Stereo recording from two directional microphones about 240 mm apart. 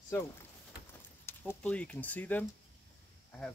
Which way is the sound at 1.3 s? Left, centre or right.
Centre.